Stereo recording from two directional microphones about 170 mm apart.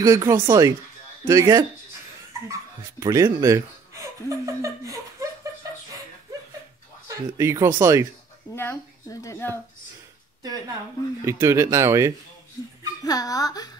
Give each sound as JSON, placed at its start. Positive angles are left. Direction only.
{"t": 0.0, "sound": "speech", "side_deg": -20}
{"t": 7.1, "sound": "speech", "side_deg": -20}
{"t": 8.5, "sound": "speech", "side_deg": 15}
{"t": 11.2, "sound": "speech", "side_deg": -15}
{"t": 13.0, "sound": "speech", "side_deg": 20}